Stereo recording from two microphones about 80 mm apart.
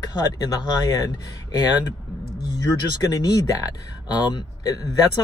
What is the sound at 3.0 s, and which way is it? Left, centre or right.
Speech, left.